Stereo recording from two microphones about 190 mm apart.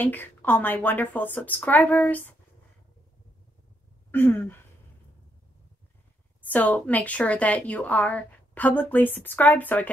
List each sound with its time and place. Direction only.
0.0 s a woman's voice: 10° left (ahead or behind)
4.1 s a woman's voice: 10° left (ahead or behind)
6.4 s a woman's voice: 5° left (ahead or behind)